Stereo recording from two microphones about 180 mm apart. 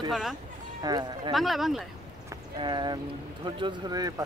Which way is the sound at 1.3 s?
Centre (ahead or behind).